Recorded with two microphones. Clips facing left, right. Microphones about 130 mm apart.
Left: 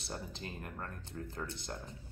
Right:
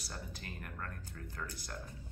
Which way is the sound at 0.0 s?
25° left (ahead or behind).